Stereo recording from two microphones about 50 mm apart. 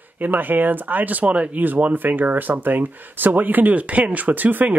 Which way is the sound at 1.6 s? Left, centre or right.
Right.